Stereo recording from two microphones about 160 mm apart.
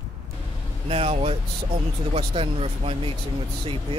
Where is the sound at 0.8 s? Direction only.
35° right (ahead or behind).